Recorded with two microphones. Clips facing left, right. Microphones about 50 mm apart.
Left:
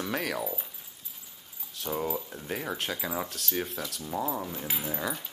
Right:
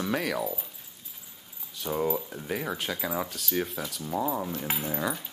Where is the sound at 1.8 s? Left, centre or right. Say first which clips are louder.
Right 3 dB; centre.